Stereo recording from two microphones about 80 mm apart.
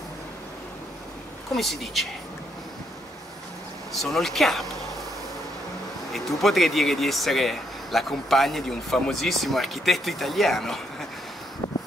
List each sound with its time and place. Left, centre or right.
1.5 s speech: centre
3.9 s speech: centre
6.1 s speech: centre
11.6 s a sound: left